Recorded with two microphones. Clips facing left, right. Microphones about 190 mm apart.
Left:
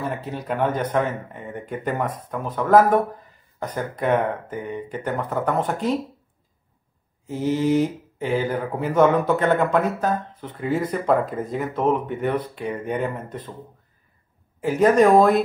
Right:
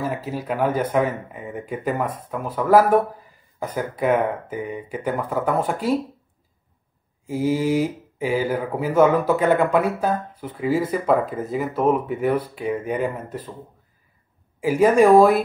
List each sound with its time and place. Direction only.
0.0 s speech: 5° right (ahead or behind)
7.2 s speech: 10° right (ahead or behind)
14.6 s speech: 10° right (ahead or behind)